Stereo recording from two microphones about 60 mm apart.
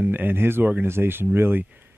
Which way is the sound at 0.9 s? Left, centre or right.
Right.